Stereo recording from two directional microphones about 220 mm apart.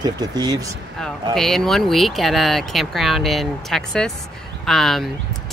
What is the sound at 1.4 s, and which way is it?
Speech, centre (ahead or behind).